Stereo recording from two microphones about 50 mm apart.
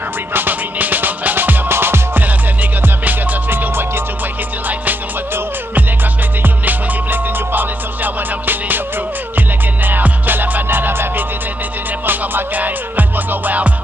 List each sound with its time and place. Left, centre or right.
0.3 s music: right
6.4 s music: right
9.8 s music: right